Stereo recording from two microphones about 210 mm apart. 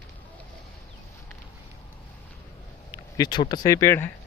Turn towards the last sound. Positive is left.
turn(degrees=10)  # may be behind; listen again after turning